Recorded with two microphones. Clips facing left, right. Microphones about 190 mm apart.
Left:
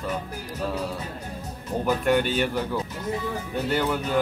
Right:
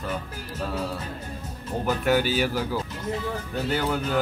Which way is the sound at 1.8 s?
5° right (ahead or behind).